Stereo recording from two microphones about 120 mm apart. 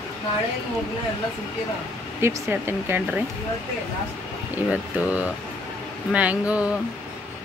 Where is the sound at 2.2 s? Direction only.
25° right (ahead or behind).